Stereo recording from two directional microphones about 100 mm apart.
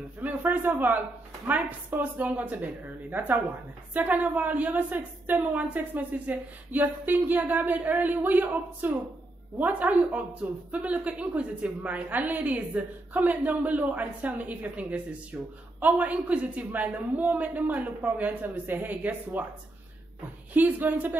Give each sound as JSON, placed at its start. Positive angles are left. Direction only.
{"t": 0.2, "sound": "a woman's voice", "side_deg": -15}
{"t": 20.5, "sound": "a woman's voice", "side_deg": -20}